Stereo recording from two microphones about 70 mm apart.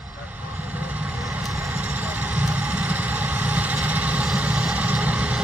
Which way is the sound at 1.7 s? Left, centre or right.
Centre.